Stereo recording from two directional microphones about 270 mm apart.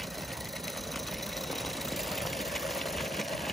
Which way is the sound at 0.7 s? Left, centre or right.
Centre.